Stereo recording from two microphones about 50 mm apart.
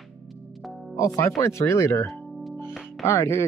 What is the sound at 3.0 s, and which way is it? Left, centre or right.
Speech, left.